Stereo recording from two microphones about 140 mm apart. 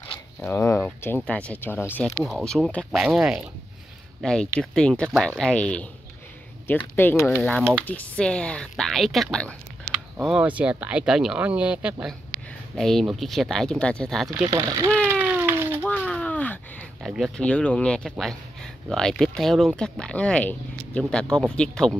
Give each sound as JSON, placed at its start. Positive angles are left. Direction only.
{"t": 0.4, "sound": "speech", "side_deg": 15}
{"t": 2.0, "sound": "speech", "side_deg": 0}
{"t": 7.0, "sound": "speech", "side_deg": 15}
{"t": 10.1, "sound": "speech", "side_deg": -10}
{"t": 14.5, "sound": "speech", "side_deg": -25}
{"t": 15.0, "sound": "a sound", "side_deg": -15}
{"t": 15.8, "sound": "a sound", "side_deg": 10}
{"t": 17.0, "sound": "speech", "side_deg": 0}
{"t": 17.4, "sound": "speech", "side_deg": 10}